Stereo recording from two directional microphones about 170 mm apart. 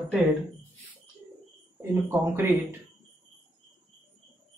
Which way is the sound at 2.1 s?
15° right (ahead or behind).